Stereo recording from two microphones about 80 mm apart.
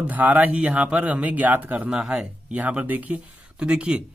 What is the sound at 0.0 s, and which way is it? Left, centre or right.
Speech, centre.